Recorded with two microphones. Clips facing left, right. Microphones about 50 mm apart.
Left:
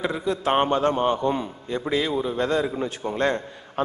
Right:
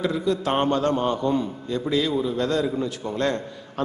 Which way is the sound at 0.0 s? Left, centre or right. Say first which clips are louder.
Right 1 dB; left.